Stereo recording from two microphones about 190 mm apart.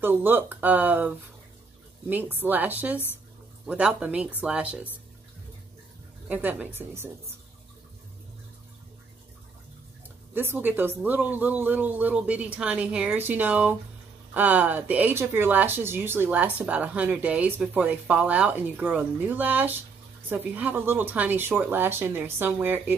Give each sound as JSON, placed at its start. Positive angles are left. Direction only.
{"t": 0.0, "sound": "speech", "side_deg": -10}
{"t": 6.2, "sound": "speech", "side_deg": -10}
{"t": 10.3, "sound": "speech", "side_deg": -10}